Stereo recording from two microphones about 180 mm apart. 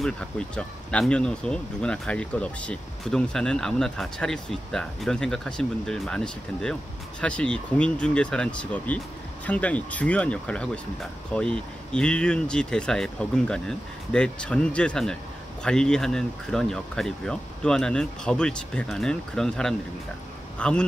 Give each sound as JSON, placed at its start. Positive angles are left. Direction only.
{"t": 0.0, "sound": "speech", "side_deg": 5}